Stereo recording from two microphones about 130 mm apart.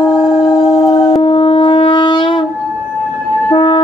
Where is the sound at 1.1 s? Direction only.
35° left (ahead or behind).